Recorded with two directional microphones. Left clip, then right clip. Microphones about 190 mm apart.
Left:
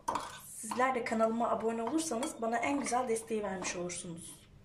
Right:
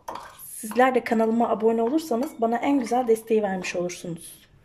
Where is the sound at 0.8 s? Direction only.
55° right (ahead or behind).